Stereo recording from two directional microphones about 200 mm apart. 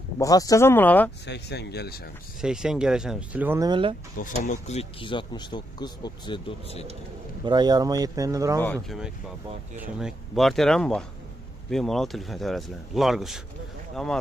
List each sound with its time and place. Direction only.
0.2 s speech: 15° left (ahead or behind)
1.2 s speech: 55° left (ahead or behind)
2.4 s speech: 5° right (ahead or behind); by 3.9 s 20° right (ahead or behind)
4.2 s speech: 35° left (ahead or behind)
7.4 s speech: 20° right (ahead or behind)
8.8 s speech: centre (ahead or behind)